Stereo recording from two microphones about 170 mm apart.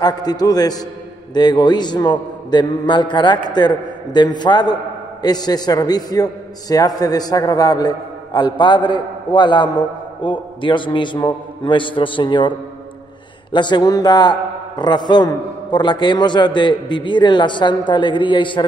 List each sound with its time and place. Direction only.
0.0 s a man's voice: 25° left (ahead or behind)